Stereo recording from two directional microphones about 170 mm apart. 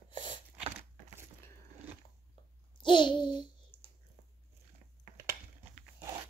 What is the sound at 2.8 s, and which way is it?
Babbling, 30° left (ahead or behind).